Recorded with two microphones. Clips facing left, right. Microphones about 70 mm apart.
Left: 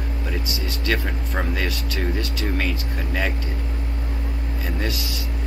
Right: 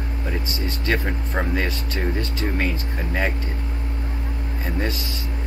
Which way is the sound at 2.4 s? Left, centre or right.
Centre.